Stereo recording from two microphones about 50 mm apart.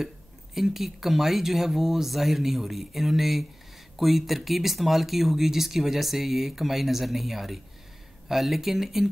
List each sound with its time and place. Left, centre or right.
0.6 s speech: centre